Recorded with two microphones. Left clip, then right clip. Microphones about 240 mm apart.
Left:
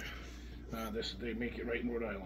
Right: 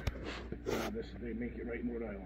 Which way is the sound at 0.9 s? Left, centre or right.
Left.